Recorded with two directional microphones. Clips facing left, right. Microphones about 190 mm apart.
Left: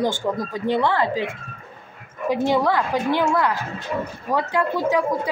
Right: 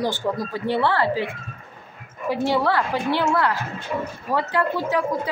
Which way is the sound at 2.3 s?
15° left (ahead or behind).